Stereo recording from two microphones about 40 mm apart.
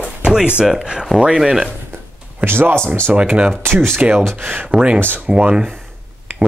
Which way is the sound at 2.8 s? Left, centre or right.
Right.